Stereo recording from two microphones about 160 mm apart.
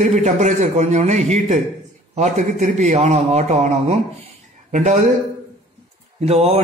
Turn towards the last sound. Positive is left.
turn(degrees=-40)  # may be behind; listen again after turning